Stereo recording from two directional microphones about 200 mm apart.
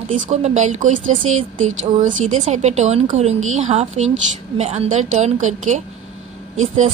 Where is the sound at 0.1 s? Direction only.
35° right (ahead or behind).